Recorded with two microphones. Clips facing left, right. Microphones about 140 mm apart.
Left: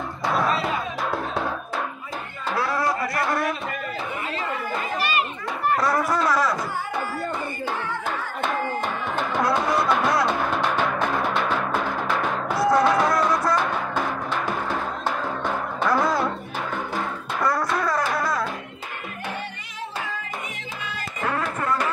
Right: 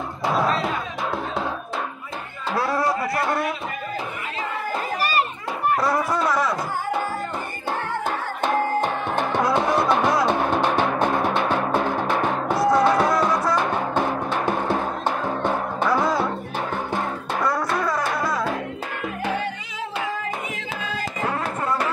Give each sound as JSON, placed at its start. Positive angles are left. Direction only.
{"t": 0.5, "sound": "music", "side_deg": 0}
{"t": 2.6, "sound": "a sound", "side_deg": -30}
{"t": 6.2, "sound": "a sound", "side_deg": -20}
{"t": 9.4, "sound": "music", "side_deg": -15}
{"t": 13.9, "sound": "music", "side_deg": -25}
{"t": 17.5, "sound": "music", "side_deg": -15}